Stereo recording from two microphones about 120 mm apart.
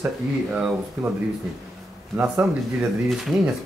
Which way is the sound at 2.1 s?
10° right (ahead or behind).